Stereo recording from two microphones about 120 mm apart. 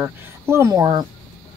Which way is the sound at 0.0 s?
25° right (ahead or behind).